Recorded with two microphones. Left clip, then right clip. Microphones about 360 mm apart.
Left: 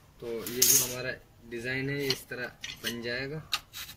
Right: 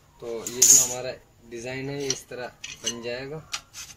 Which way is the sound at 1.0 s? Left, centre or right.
Right.